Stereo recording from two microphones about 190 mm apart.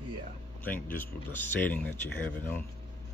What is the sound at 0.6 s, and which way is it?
Speech, 10° left (ahead or behind).